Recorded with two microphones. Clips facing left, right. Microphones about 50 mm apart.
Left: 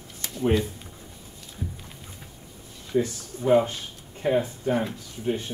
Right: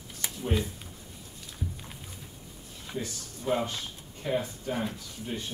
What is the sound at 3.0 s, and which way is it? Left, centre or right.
Speech, left.